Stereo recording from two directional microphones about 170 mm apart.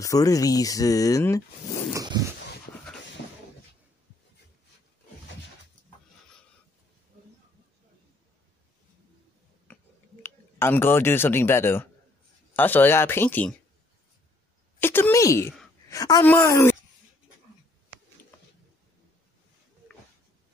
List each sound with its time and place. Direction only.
0.0 s speech: 20° left (ahead or behind)
2.0 s dog: 20° right (ahead or behind)
10.2 s speech: 10° left (ahead or behind)
14.8 s speech: 15° left (ahead or behind)